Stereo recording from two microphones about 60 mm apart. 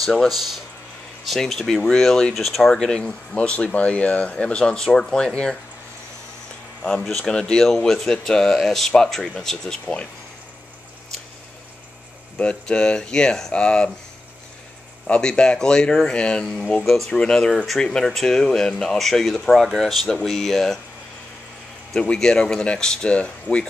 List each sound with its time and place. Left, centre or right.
0.0 s speech: centre
2.7 s speech: centre
6.8 s speech: centre
12.4 s speech: centre
15.0 s speech: centre
16.8 s speech: centre
17.1 s speech: centre
22.0 s speech: centre